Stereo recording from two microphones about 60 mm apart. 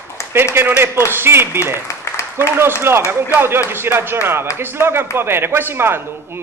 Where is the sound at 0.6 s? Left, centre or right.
Right.